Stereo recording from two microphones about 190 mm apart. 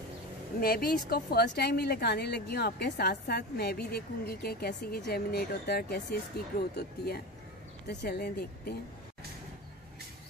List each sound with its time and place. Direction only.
0.6 s speech: 50° left (ahead or behind)